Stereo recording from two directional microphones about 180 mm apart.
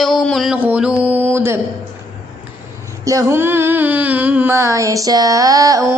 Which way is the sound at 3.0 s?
20° right (ahead or behind).